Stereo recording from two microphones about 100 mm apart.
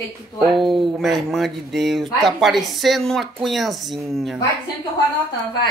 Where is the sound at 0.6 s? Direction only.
Centre (ahead or behind).